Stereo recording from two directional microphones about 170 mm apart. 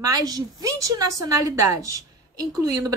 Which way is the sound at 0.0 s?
20° right (ahead or behind).